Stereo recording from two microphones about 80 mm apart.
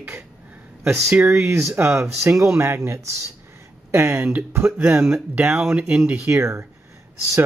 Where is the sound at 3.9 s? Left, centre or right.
Right.